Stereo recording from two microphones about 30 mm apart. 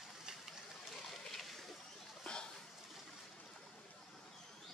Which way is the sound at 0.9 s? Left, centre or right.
Centre.